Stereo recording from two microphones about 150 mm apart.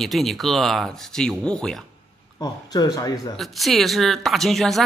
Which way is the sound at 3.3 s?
Centre (ahead or behind).